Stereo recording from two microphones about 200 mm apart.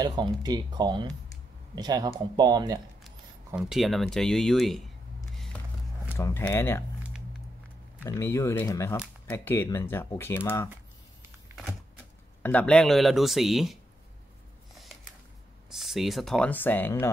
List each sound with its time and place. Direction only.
0.0 s speech: 20° right (ahead or behind)
3.5 s speech: centre (ahead or behind)
6.1 s speech: 15° left (ahead or behind)
8.0 s speech: 15° left (ahead or behind)
12.4 s speech: 5° left (ahead or behind)
15.7 s speech: centre (ahead or behind)